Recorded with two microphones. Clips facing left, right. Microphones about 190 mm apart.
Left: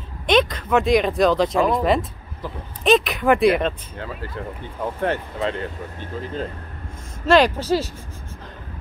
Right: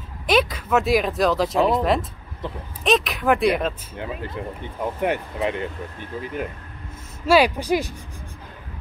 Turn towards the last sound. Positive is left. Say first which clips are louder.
# left 1 dB
turn(degrees=-15)  # may be behind; listen again after turning